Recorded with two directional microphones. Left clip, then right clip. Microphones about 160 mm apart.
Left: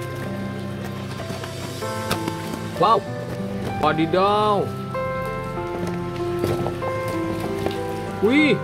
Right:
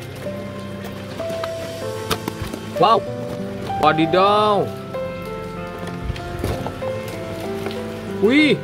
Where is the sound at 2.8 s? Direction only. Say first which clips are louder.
Right 3 dB; 15° right (ahead or behind).